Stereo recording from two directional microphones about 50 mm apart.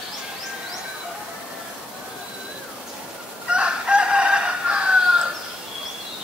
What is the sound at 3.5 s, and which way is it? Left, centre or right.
Chicken, centre.